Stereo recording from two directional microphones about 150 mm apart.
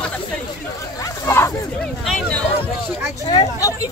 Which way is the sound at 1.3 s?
20° left (ahead or behind).